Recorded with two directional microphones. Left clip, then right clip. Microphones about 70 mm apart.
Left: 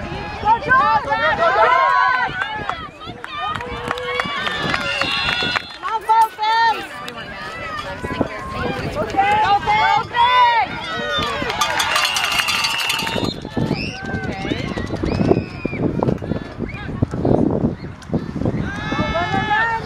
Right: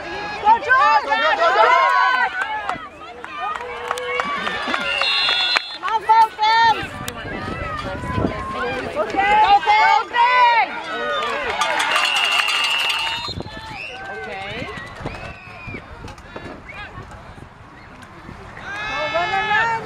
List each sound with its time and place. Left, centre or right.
0.5 s a sound: right
2.0 s run: centre
4.0 s run: left
5.5 s run: right
9.0 s run: left
9.4 s a sound: right
10.4 s run: centre
10.9 s run: left
18.9 s sheep: centre